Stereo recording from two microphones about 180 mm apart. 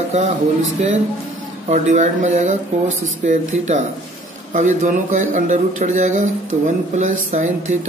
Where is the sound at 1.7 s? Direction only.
40° right (ahead or behind).